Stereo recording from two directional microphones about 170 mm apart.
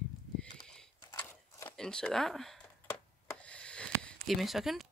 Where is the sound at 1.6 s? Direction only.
5° left (ahead or behind).